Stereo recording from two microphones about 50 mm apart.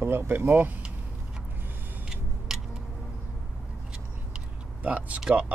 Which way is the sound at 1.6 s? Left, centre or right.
Right.